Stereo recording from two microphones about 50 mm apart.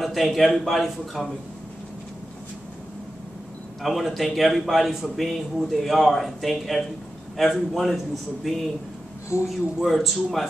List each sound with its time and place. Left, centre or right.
0.0 s a man's voice: centre
3.8 s a man's voice: centre